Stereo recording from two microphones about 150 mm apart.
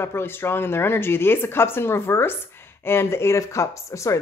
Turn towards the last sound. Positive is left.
turn(degrees=20)  # may be behind; listen again after turning